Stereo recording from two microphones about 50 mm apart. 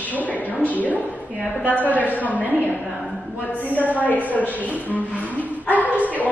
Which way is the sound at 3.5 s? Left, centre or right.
Left.